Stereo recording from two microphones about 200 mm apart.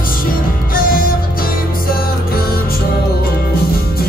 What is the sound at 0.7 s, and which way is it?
Music, 45° left (ahead or behind).